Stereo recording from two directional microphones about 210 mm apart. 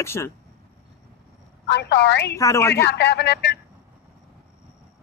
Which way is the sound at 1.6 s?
55° left (ahead or behind).